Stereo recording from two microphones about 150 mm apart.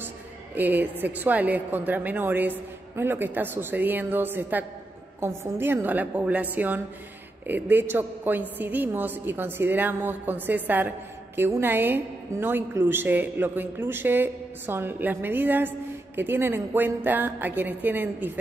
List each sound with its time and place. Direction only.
0.6 s a woman's voice: 10° right (ahead or behind)